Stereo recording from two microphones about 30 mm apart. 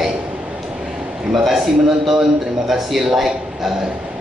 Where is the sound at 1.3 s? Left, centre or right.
Centre.